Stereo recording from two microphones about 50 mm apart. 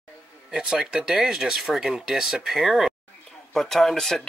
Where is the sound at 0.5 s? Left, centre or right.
Centre.